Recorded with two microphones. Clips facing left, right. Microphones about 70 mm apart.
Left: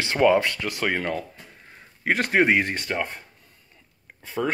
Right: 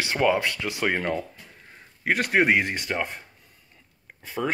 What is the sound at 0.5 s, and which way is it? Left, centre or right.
Speech, centre.